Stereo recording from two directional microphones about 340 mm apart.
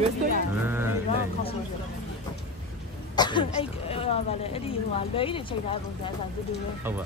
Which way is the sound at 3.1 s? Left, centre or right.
Centre.